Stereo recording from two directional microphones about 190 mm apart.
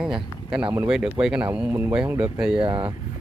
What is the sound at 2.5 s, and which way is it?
Speech, 25° right (ahead or behind).